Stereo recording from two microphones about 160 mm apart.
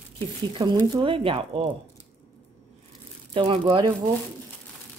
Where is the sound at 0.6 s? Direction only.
30° right (ahead or behind).